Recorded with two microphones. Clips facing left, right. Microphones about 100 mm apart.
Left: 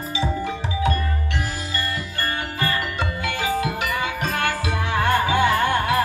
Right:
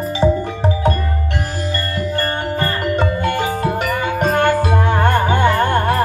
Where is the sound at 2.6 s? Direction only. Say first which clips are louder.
Right 6 dB; 45° right (ahead or behind).